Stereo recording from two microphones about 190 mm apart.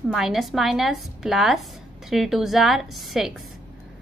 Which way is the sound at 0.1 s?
Centre (ahead or behind).